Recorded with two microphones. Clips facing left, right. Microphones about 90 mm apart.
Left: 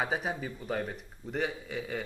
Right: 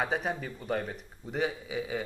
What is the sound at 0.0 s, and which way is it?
A man's voice, centre (ahead or behind).